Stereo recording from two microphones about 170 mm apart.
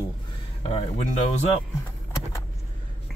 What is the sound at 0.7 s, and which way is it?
Speech, 35° left (ahead or behind).